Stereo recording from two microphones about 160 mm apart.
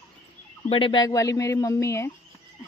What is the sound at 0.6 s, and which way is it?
Speech, 35° left (ahead or behind).